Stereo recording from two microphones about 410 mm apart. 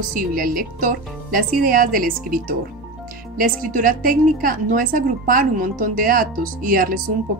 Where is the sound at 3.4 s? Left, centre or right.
Centre.